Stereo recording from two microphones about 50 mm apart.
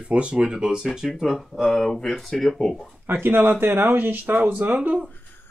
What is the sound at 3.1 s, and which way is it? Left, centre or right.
Speech, right.